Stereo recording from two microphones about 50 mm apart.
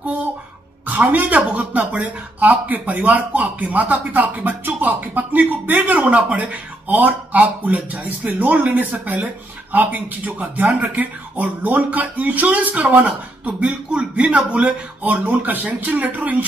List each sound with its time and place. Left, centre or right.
0.8 s speech: right